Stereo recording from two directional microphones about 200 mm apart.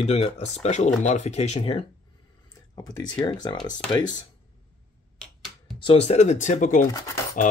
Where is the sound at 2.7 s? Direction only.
20° left (ahead or behind).